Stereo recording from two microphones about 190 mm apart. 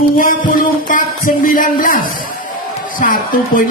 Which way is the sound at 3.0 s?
45° left (ahead or behind).